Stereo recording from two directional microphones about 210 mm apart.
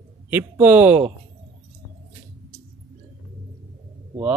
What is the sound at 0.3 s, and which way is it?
Speech, 10° right (ahead or behind).